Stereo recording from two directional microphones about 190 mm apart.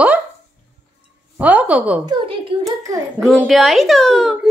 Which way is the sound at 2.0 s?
30° right (ahead or behind).